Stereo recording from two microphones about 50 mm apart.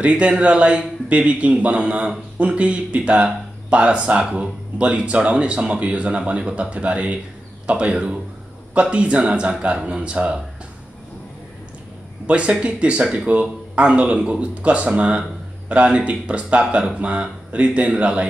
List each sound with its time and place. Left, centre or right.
0.0 s speech: right
12.3 s speech: right